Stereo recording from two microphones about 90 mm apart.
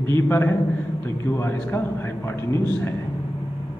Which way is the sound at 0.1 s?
25° left (ahead or behind).